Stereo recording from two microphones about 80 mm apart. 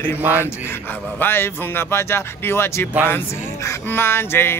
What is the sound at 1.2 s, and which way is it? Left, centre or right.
Speech, left.